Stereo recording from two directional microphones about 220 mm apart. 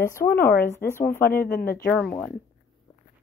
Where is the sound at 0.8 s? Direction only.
10° left (ahead or behind).